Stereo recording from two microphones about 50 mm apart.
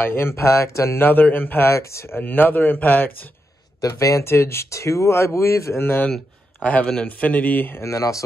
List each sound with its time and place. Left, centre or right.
0.0 s speech: left
0.9 s speech: left
1.7 s speech: left
2.0 s speech: left
4.0 s speech: left
5.8 s speech: left
6.6 s speech: left
7.8 s speech: left